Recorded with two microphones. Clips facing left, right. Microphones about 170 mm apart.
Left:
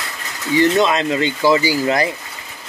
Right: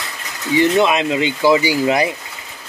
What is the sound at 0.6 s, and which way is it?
Speech, 15° right (ahead or behind).